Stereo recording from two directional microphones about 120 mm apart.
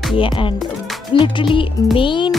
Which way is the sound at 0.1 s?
45° left (ahead or behind).